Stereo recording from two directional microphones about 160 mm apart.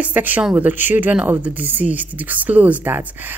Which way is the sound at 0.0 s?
10° right (ahead or behind).